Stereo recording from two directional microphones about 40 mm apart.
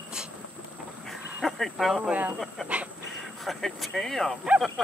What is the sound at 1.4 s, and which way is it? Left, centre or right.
Speech, centre.